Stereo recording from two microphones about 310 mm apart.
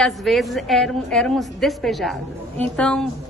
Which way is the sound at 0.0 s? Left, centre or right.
Centre.